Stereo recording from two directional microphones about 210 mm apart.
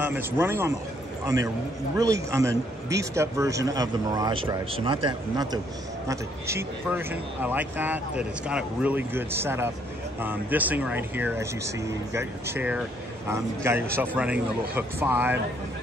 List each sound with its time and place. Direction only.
0.0 s speech: 10° right (ahead or behind)